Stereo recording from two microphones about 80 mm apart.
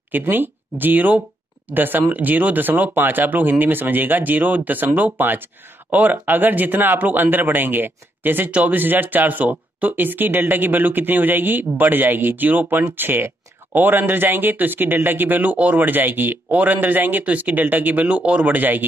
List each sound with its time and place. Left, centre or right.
0.1 s speech: right